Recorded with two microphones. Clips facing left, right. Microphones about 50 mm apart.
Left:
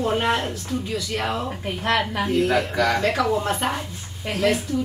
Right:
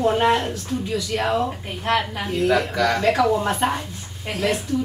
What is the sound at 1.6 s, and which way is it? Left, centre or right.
Speech, left.